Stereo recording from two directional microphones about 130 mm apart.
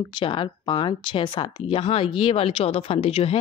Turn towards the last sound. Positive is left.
turn(degrees=45)  # may be behind; listen again after turning